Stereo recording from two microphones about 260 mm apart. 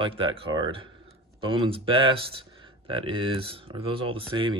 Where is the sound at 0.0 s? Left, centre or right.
Centre.